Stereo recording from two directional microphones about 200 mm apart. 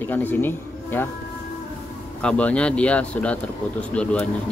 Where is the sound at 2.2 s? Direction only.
5° left (ahead or behind).